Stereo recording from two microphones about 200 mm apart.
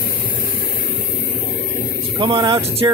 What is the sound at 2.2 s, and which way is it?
Speech, 25° right (ahead or behind).